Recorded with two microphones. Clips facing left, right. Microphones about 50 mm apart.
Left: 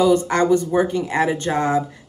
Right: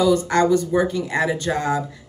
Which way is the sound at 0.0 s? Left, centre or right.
Left.